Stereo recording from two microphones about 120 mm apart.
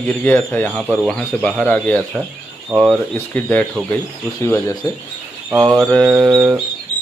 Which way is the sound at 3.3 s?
10° left (ahead or behind).